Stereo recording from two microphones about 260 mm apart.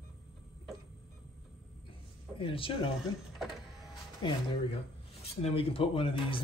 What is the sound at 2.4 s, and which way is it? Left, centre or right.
Speech, left.